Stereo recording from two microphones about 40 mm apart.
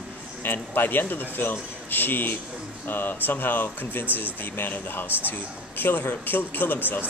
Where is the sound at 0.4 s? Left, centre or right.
Left.